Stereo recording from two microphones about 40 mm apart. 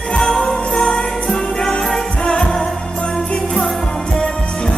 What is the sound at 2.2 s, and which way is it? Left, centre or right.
Music, left.